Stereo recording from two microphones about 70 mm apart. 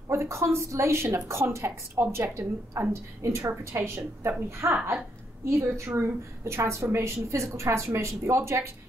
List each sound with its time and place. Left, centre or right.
0.1 s a woman's voice: right